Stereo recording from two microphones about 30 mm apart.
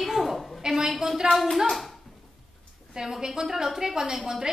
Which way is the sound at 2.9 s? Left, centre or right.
Centre.